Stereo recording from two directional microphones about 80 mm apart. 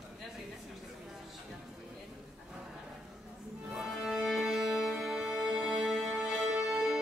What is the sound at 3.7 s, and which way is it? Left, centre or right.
Music, centre.